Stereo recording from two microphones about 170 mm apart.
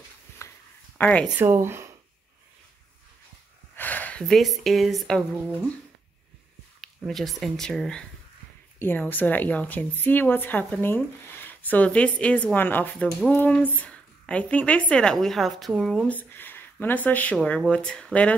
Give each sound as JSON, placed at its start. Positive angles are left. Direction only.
{"t": 0.4, "sound": "a sound", "side_deg": 15}
{"t": 0.9, "sound": "speech", "side_deg": 10}
{"t": 1.4, "sound": "speech", "side_deg": -15}
{"t": 3.7, "sound": "speech", "side_deg": 10}
{"t": 6.8, "sound": "speech", "side_deg": 0}